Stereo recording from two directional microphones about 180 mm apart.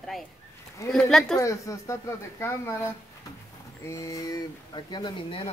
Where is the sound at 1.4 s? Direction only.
15° left (ahead or behind).